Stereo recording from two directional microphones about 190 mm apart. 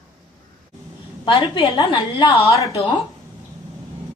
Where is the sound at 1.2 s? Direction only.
25° left (ahead or behind).